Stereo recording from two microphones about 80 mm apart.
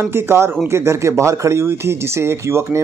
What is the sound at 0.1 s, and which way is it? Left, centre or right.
Speech, right.